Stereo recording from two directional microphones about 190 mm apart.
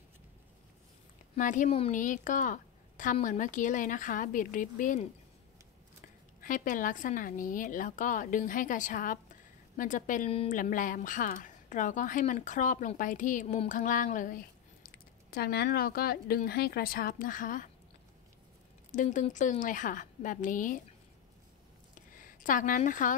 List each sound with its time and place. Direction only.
1.3 s a woman's voice: 40° left (ahead or behind)
6.4 s a woman's voice: 45° left (ahead or behind)
10.6 s a woman's voice: 45° left (ahead or behind)
15.3 s a woman's voice: 55° left (ahead or behind)
18.9 s a woman's voice: 40° left (ahead or behind)
22.1 s a woman's voice: 45° left (ahead or behind)